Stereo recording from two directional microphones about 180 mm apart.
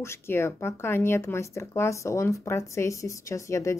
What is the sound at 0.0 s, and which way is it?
Speech, 15° left (ahead or behind).